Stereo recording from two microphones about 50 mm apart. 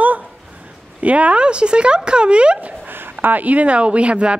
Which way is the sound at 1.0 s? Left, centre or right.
Right.